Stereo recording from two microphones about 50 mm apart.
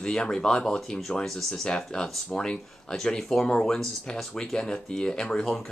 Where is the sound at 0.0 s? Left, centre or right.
Centre.